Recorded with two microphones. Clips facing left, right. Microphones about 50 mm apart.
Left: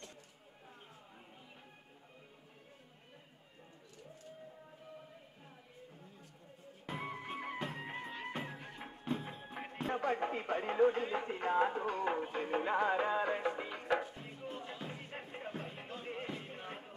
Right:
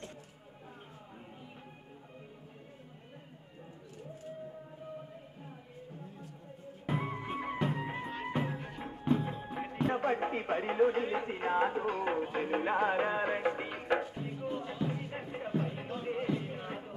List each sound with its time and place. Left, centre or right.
7.0 s music: centre
9.8 s a sound: right
11.1 s music: centre
14.2 s music: centre